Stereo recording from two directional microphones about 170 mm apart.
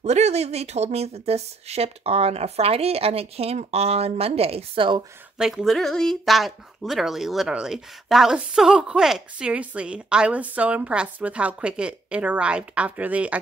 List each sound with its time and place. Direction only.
0.0 s speech: 40° right (ahead or behind)
5.4 s speech: centre (ahead or behind)